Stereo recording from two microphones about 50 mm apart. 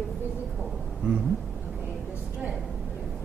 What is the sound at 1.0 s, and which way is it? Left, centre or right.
Speech, right.